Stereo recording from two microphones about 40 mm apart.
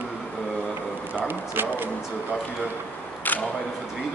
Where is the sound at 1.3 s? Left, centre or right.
Right.